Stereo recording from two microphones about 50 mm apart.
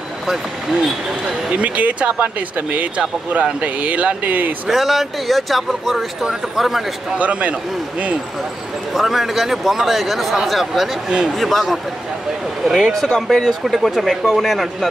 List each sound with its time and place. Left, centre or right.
0.3 s speech: centre
1.5 s speech: right
4.6 s speech: centre
7.2 s speech: right
8.9 s speech: centre